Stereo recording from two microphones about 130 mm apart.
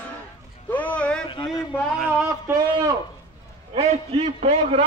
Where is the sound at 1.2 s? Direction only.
35° left (ahead or behind).